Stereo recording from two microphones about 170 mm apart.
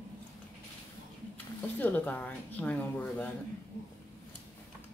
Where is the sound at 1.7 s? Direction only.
10° left (ahead or behind).